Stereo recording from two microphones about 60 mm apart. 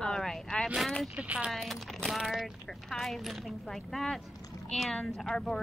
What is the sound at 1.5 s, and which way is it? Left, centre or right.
Speech, centre.